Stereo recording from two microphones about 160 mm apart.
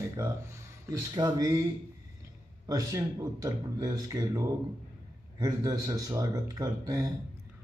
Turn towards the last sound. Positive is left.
turn(degrees=-20)  # may be behind; listen again after turning